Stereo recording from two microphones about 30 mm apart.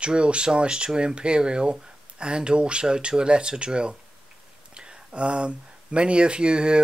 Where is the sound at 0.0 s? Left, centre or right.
Right.